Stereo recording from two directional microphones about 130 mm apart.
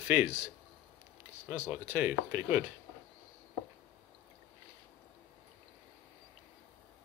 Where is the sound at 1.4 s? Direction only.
20° right (ahead or behind).